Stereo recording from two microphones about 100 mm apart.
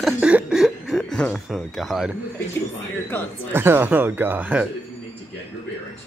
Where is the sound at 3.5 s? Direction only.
20° right (ahead or behind).